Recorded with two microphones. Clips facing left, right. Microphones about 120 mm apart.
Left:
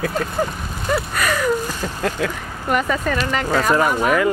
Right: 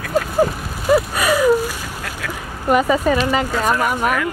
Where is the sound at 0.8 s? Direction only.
10° right (ahead or behind).